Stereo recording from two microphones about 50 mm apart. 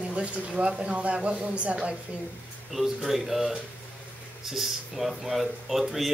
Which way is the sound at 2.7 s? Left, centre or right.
Centre.